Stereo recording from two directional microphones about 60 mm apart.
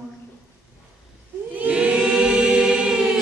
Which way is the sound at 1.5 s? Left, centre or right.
Right.